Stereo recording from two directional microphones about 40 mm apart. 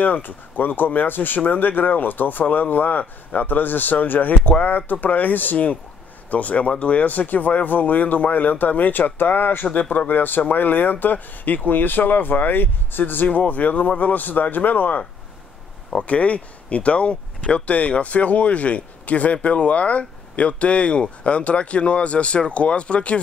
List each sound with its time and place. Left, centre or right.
0.0 s speech: left
13.3 s speech: left
16.0 s speech: left